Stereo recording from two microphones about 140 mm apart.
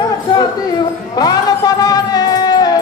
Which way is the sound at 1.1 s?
30° left (ahead or behind).